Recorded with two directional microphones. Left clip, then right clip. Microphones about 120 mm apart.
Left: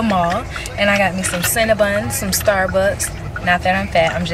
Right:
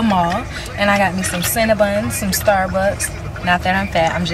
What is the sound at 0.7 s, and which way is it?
Speech, centre (ahead or behind).